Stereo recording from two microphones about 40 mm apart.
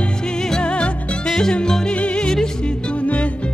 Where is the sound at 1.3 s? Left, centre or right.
Centre.